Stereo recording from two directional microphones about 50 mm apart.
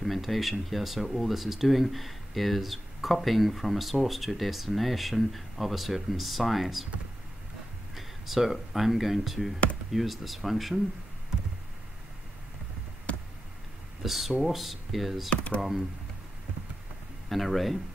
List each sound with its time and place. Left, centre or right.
0.0 s speech: centre
7.9 s speech: centre
14.0 s speech: centre
15.2 s speech: left
17.3 s speech: centre